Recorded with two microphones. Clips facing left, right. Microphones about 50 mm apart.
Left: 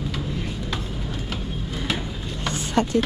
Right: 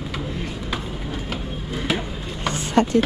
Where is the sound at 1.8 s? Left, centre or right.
Centre.